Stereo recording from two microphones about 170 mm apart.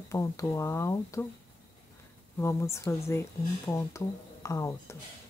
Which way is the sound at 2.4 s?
15° left (ahead or behind).